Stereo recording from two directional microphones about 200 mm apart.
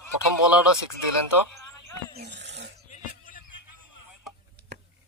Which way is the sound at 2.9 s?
40° left (ahead or behind).